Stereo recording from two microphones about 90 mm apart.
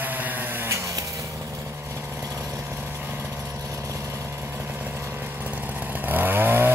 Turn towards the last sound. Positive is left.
turn(degrees=-25)  # may be behind; listen again after turning